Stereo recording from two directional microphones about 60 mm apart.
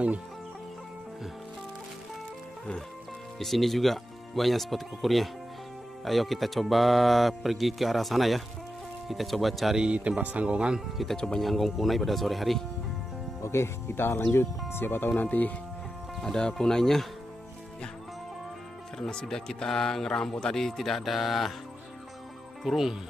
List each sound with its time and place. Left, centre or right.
3.3 s speech: centre
9.8 s speech: right
11.1 s speech: centre
11.4 s speech: centre
13.4 s speech: left
16.2 s speech: centre
18.9 s speech: centre
22.6 s speech: centre